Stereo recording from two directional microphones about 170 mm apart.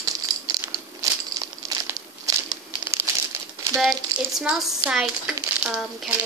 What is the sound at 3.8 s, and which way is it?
Speech, centre (ahead or behind).